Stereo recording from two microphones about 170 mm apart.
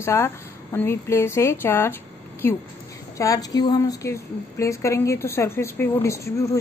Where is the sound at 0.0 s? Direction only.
15° left (ahead or behind).